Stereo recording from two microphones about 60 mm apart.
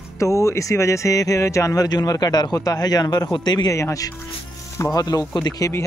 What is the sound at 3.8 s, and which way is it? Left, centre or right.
Speech, left.